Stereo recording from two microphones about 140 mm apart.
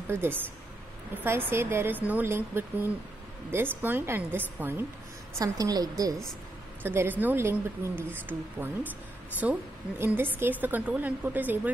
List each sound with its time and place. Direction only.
0.1 s a woman's voice: 15° right (ahead or behind)
5.4 s a woman's voice: 25° right (ahead or behind)
6.8 s a woman's voice: 15° right (ahead or behind)